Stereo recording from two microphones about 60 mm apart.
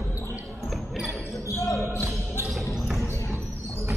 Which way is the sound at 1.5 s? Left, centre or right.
Left.